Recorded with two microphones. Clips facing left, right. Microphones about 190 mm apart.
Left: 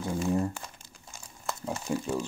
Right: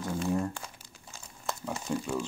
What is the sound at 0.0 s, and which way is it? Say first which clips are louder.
Crumpling: left 2 dB; 10° left (ahead or behind).